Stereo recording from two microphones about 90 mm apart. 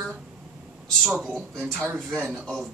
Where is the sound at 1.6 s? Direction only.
20° right (ahead or behind).